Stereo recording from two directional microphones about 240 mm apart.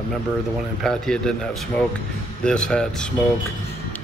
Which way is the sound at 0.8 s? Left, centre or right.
Centre.